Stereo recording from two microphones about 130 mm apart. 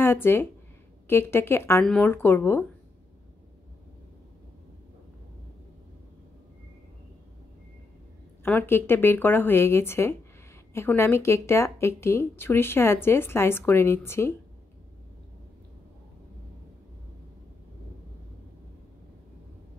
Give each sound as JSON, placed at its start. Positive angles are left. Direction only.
{"t": 0.0, "sound": "a woman's voice", "side_deg": 15}
{"t": 8.5, "sound": "a woman's voice", "side_deg": 15}